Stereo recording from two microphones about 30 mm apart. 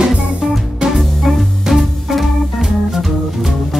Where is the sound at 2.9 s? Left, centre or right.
Centre.